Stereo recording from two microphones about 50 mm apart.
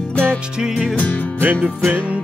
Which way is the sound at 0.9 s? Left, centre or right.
Left.